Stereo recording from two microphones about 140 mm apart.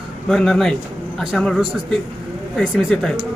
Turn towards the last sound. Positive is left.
turn(degrees=5)  # may be behind; listen again after turning